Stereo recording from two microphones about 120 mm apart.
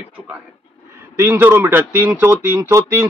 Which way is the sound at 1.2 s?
15° right (ahead or behind).